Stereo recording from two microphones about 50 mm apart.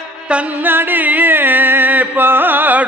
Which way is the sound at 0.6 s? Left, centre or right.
Right.